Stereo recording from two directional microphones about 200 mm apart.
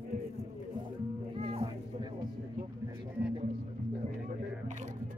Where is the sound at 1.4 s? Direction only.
30° right (ahead or behind).